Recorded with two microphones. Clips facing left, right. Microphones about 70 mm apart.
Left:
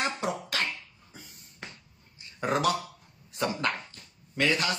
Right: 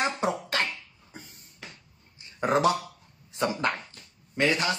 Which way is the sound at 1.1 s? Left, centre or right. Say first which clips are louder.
Right 4 dB; right.